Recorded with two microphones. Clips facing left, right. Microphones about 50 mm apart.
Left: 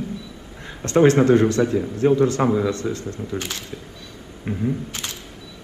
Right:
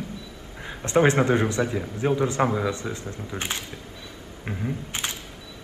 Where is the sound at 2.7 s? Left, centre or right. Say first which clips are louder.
Left 5 dB; centre.